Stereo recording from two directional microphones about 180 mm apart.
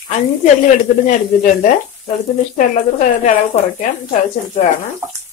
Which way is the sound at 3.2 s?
45° left (ahead or behind).